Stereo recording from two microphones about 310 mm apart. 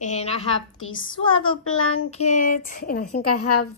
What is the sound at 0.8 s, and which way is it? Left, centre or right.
Speech, left.